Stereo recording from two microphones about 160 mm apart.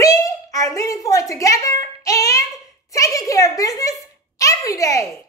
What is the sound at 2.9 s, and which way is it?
A child's voice, 20° left (ahead or behind).